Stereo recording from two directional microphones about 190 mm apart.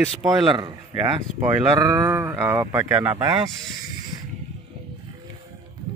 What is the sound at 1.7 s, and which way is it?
Speech, 15° right (ahead or behind).